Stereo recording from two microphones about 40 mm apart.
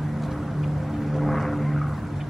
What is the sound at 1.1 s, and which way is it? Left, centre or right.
Vehicle, centre.